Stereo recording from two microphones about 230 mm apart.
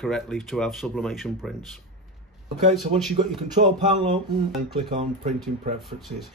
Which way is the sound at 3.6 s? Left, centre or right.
Right.